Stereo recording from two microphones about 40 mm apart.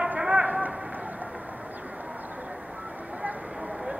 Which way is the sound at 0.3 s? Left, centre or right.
Right.